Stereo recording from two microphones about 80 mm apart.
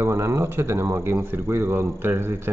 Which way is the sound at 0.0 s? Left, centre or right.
Right.